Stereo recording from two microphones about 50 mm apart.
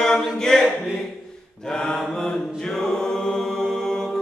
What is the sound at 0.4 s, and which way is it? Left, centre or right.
A capella, centre.